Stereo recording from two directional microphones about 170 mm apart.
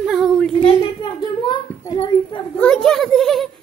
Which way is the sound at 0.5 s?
30° left (ahead or behind).